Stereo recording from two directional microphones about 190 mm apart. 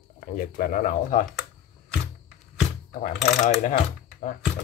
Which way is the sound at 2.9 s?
45° left (ahead or behind).